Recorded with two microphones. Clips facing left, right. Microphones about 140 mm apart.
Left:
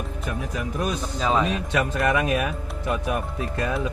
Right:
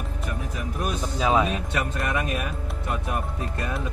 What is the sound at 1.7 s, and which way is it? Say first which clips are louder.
Speech: left 5 dB; 90° left.